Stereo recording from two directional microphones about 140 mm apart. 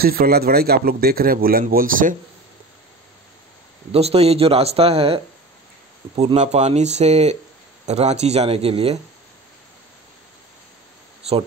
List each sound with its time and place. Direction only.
0.0 s a man's voice: 90° right
3.9 s speech: 45° right (ahead or behind)